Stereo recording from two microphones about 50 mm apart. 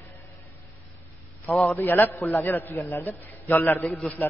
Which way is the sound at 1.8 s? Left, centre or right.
Left.